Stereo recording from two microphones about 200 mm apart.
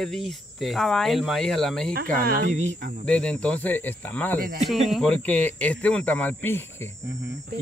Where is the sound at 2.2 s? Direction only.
40° right (ahead or behind).